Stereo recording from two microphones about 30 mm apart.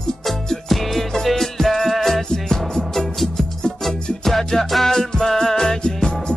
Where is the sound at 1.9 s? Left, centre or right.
Centre.